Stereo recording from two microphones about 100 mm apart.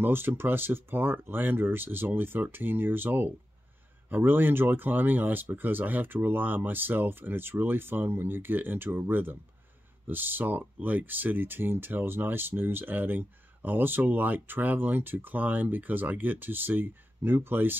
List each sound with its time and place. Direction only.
0.0 s speech: 20° right (ahead or behind)